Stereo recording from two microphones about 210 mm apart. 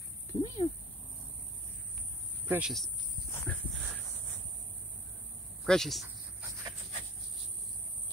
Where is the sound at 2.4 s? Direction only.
10° right (ahead or behind).